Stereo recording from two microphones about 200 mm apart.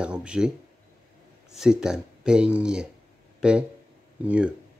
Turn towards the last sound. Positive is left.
turn(degrees=-5)  # may be behind; listen again after turning